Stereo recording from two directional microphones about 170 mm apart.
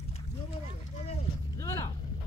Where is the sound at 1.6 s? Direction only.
20° left (ahead or behind).